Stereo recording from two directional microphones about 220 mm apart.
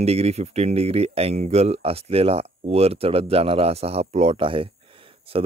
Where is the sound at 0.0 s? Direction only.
30° right (ahead or behind).